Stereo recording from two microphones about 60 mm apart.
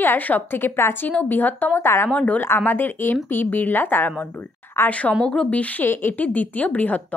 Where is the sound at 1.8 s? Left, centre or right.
Left.